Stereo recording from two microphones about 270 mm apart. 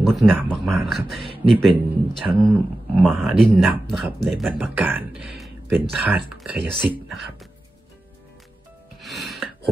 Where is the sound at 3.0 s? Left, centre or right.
Centre.